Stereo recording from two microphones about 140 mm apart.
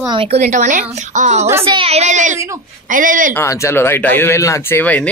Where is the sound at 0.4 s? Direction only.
65° right (ahead or behind).